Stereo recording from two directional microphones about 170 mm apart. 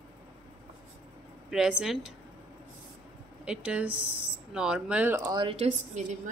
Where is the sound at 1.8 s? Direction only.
Centre (ahead or behind).